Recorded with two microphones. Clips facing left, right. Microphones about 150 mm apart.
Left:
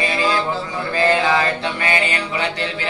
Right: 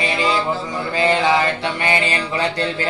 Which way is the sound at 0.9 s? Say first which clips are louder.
Even; 20° right (ahead or behind).